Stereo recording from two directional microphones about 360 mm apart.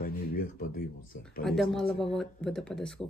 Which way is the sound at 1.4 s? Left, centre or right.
Centre.